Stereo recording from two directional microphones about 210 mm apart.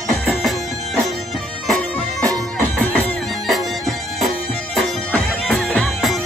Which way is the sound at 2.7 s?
5° left (ahead or behind).